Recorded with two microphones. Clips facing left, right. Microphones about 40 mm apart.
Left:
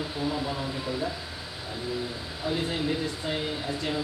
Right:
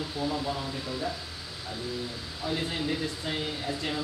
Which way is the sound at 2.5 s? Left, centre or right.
Centre.